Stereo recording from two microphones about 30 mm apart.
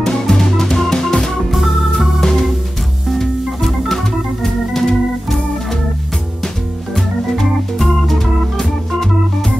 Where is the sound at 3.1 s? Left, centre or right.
Centre.